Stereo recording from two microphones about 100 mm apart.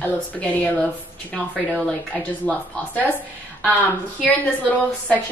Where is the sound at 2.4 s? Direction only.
15° left (ahead or behind).